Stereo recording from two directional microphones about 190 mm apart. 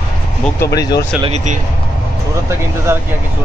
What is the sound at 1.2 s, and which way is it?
Speech, 35° right (ahead or behind).